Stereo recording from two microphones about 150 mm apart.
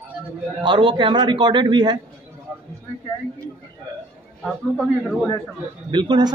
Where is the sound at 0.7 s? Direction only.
35° right (ahead or behind).